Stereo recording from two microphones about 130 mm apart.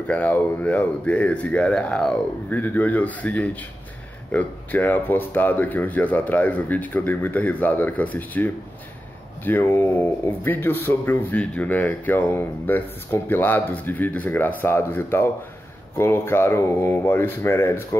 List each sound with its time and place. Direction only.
0.1 s speech: 10° left (ahead or behind)